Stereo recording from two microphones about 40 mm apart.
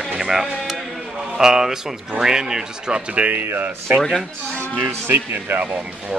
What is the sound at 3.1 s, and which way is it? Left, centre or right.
Speech, right.